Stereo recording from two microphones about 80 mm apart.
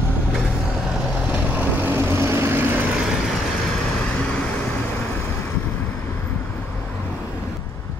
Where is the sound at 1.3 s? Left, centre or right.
Centre.